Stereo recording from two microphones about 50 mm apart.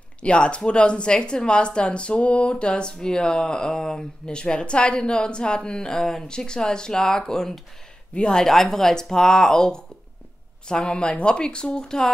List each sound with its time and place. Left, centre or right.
0.2 s a woman's voice: left